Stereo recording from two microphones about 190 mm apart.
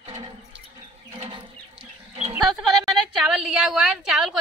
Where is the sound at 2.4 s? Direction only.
Centre (ahead or behind).